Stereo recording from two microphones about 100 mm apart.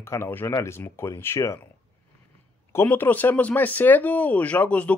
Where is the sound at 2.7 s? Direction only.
20° left (ahead or behind).